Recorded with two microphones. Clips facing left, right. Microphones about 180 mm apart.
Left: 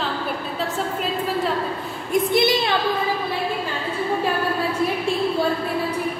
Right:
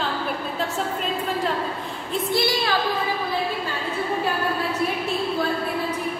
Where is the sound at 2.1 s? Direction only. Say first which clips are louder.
Left 5 dB; 20° left (ahead or behind).